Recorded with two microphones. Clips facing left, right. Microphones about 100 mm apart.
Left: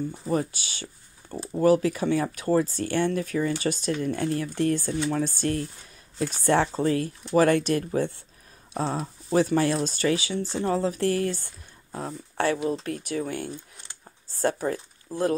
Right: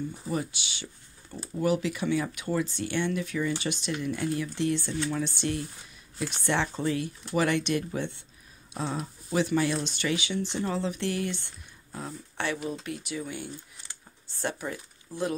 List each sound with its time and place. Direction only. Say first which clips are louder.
0.3 s speech: left 6 dB; 45° left (ahead or behind)
14.4 s speech: left 7 dB; 40° left (ahead or behind)